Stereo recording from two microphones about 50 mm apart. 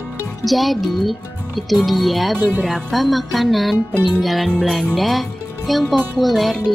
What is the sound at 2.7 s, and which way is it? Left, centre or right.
Speech, centre.